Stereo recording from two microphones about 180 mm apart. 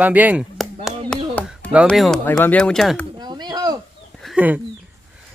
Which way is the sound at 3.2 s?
25° right (ahead or behind).